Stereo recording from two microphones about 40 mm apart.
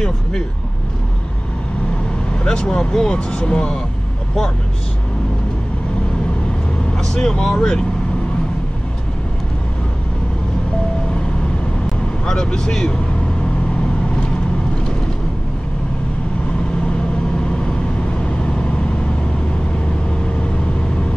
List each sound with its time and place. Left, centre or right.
2.4 s speech: centre
7.0 s speech: centre
12.3 s speech: centre
17.5 s vehicle: left